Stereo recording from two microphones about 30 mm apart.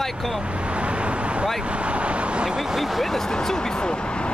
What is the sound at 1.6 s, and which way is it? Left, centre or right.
Speech, right.